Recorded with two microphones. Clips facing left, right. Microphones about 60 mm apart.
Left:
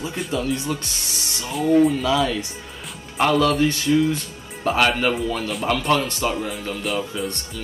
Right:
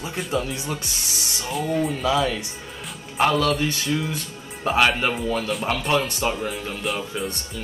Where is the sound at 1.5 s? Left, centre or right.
Centre.